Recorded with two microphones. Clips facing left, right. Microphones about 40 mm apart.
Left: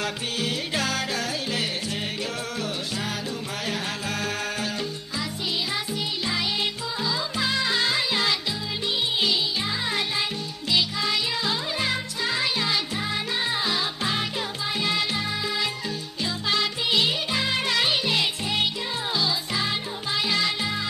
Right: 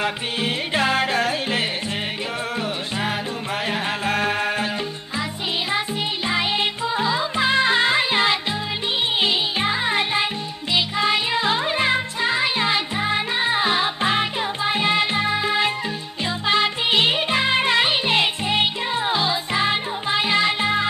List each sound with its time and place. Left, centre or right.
0.0 s music: right
3.6 s music: right
6.2 s music: right